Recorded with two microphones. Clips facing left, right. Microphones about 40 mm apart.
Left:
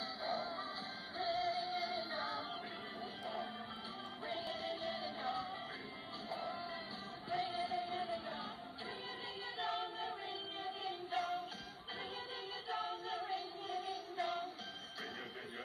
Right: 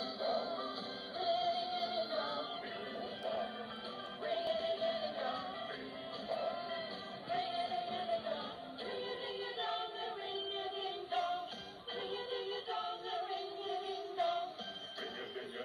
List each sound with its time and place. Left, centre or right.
0.2 s music: right
4.6 s music: right
6.2 s a sound: right
7.2 s music: right
9.6 s choir: right
10.6 s music: right